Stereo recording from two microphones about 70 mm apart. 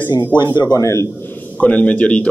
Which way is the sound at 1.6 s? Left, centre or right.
Centre.